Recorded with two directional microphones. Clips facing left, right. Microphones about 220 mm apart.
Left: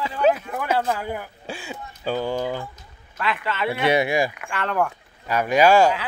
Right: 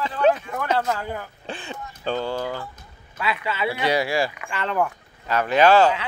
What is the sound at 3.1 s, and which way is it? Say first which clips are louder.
Speech: even; 10° right (ahead or behind).